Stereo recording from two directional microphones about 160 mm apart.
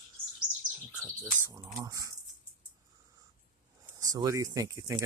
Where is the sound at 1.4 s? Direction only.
20° right (ahead or behind).